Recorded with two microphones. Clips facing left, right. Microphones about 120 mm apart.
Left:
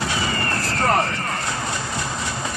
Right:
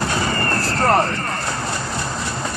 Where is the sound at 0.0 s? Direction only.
50° right (ahead or behind).